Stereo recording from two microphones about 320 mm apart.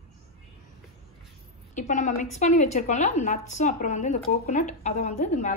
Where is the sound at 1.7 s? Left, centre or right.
Left.